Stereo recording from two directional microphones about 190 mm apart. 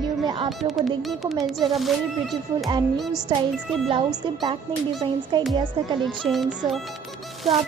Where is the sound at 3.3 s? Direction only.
25° right (ahead or behind).